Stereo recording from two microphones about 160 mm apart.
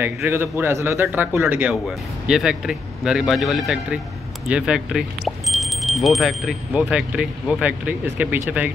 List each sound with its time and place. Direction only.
0.0 s a man's voice: 15° right (ahead or behind)